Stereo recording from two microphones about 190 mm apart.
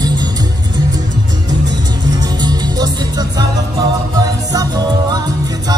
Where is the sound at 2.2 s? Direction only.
20° right (ahead or behind).